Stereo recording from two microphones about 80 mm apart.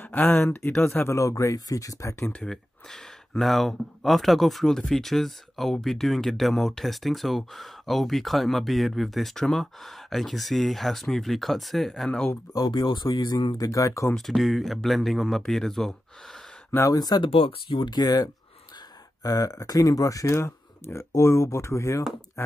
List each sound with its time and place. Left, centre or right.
0.0 s speech: left
0.8 s speech: left
2.4 s speech: centre
12.5 s speech: left
13.7 s speech: left
14.1 s speech: centre
16.7 s speech: left
17.6 s speech: left